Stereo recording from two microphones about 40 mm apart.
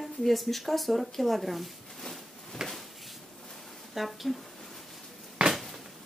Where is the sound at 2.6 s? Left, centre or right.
Centre.